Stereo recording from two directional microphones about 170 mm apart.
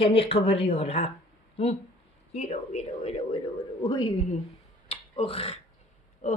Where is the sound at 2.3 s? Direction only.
40° left (ahead or behind).